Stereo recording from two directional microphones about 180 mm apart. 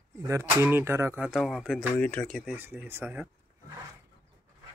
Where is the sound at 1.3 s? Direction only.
Centre (ahead or behind).